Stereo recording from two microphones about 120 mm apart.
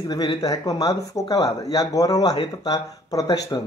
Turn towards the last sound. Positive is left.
turn(degrees=30)  # may be behind; listen again after turning